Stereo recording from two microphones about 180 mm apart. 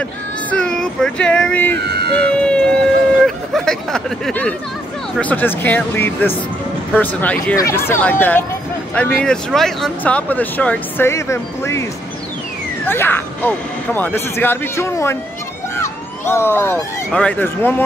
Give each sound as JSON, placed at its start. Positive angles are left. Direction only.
{"t": 0.5, "sound": "speech", "side_deg": 5}
{"t": 12.8, "sound": "speech", "side_deg": 10}